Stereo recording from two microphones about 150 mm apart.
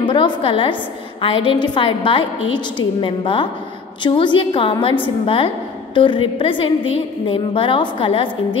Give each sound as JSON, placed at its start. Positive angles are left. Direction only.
{"t": 0.0, "sound": "a woman's voice", "side_deg": 35}